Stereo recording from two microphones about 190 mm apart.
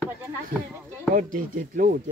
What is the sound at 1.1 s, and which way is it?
Speech, 45° right (ahead or behind).